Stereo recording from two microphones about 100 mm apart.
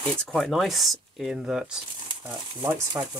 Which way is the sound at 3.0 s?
30° right (ahead or behind).